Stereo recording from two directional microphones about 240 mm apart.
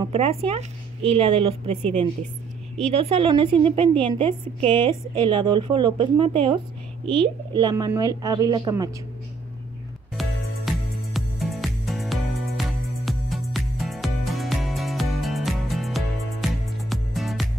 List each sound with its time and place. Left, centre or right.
0.0 s a woman's voice: right
10.7 s music: centre